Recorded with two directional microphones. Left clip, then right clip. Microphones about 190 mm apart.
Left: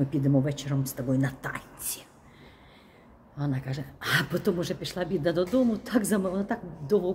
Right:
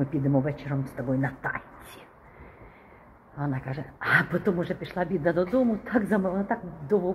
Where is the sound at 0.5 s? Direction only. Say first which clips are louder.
Even; 15° left (ahead or behind).